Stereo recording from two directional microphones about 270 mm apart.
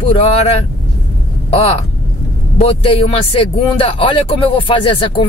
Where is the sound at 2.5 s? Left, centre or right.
Centre.